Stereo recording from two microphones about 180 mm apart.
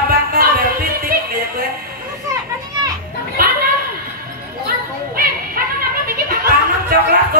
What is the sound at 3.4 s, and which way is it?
Children playing, 55° right (ahead or behind).